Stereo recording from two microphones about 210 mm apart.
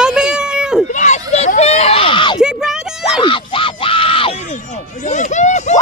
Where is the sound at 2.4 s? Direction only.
5° right (ahead or behind).